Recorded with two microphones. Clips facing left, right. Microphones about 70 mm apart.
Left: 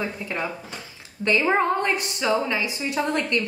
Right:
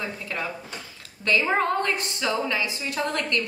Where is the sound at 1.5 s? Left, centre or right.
Centre.